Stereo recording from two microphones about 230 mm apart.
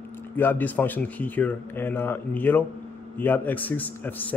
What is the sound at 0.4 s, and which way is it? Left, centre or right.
A man's voice, centre.